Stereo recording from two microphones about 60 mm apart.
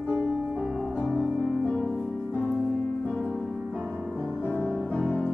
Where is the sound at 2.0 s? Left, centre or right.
Left.